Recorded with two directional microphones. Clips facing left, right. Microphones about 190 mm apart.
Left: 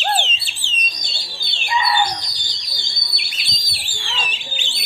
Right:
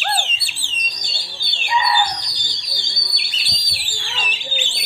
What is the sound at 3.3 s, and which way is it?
Bird, 20° left (ahead or behind).